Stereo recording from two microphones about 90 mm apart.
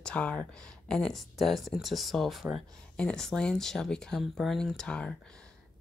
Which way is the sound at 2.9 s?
10° left (ahead or behind).